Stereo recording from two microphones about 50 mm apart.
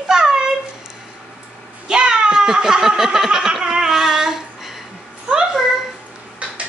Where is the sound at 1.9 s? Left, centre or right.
Centre.